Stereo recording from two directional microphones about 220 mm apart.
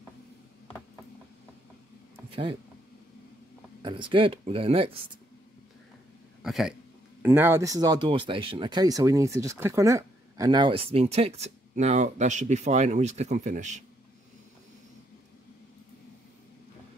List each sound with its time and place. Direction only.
3.8 s speech: 20° right (ahead or behind)
6.4 s speech: centre (ahead or behind); by 13.8 s 35° right (ahead or behind)